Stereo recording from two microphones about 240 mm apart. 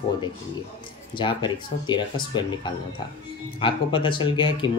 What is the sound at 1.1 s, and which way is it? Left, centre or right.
Speech, centre.